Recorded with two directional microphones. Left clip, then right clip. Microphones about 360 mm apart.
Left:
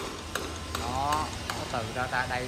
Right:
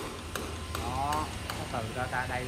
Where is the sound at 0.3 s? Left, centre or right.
Left.